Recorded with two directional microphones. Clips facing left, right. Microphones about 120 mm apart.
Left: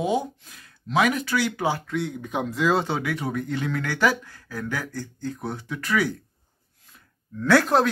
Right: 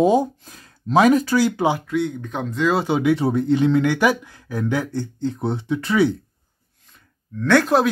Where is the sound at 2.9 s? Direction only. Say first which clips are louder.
Right 9 dB; 25° right (ahead or behind).